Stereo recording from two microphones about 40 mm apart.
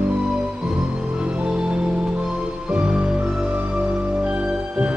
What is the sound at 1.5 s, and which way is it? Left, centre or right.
Music, right.